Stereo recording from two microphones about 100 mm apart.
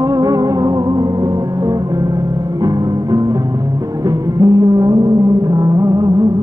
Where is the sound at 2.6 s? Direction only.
40° right (ahead or behind).